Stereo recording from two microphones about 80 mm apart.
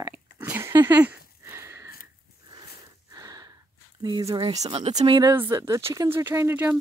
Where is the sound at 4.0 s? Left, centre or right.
Right.